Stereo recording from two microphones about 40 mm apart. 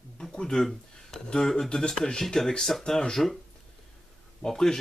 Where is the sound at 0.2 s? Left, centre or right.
Centre.